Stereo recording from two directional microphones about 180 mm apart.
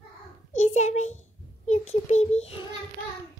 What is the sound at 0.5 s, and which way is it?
Speech, 40° left (ahead or behind).